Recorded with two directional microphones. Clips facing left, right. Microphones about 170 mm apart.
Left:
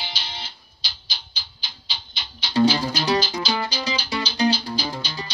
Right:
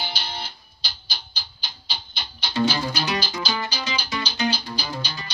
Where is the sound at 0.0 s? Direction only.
50° right (ahead or behind).